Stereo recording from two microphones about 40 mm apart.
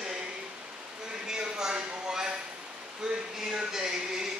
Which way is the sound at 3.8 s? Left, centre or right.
Centre.